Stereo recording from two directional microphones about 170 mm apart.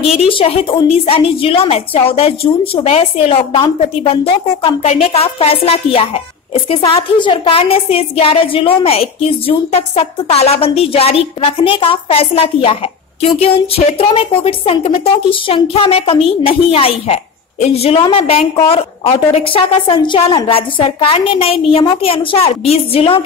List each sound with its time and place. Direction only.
0.1 s a woman's voice: 35° left (ahead or behind)